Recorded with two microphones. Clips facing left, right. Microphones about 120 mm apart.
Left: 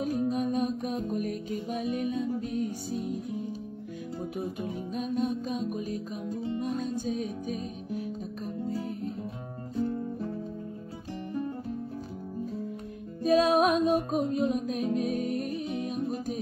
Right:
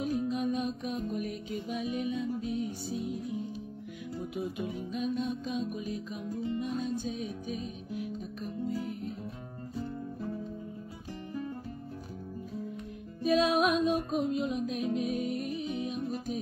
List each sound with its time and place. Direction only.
0.0 s music: 40° left (ahead or behind)
4.4 s music: 40° left (ahead or behind)
6.2 s music: 25° left (ahead or behind)
6.8 s music: 40° left (ahead or behind)
13.2 s music: 40° left (ahead or behind)